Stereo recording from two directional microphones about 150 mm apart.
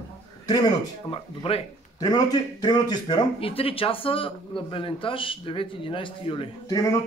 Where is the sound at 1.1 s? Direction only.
40° left (ahead or behind).